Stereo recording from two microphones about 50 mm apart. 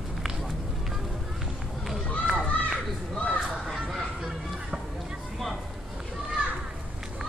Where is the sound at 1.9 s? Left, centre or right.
Centre.